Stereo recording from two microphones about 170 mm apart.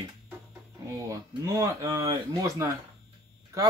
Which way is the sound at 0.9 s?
20° right (ahead or behind).